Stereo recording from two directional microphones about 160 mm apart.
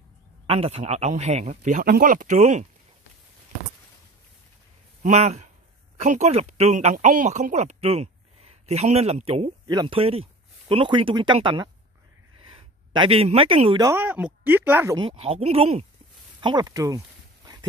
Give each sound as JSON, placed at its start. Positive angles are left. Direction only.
{"t": 0.5, "sound": "speech", "side_deg": -40}
{"t": 5.0, "sound": "speech", "side_deg": -45}
{"t": 12.4, "sound": "a sound", "side_deg": -30}
{"t": 13.8, "sound": "speech", "side_deg": -10}
{"t": 15.0, "sound": "speech", "side_deg": -35}
{"t": 16.3, "sound": "speech", "side_deg": -30}